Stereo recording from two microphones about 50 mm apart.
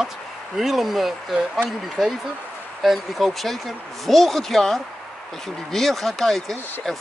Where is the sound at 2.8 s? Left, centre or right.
Centre.